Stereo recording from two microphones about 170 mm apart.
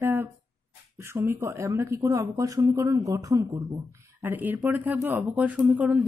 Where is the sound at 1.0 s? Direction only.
15° right (ahead or behind).